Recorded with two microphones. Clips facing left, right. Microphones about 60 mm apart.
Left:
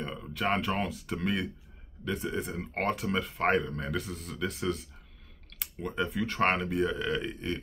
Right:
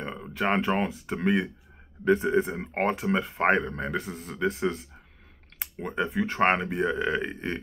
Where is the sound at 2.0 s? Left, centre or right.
Right.